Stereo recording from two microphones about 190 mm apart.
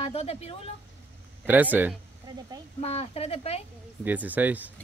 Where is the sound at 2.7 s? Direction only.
30° left (ahead or behind).